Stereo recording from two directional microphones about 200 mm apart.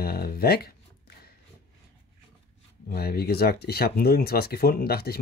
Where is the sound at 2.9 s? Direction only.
50° left (ahead or behind).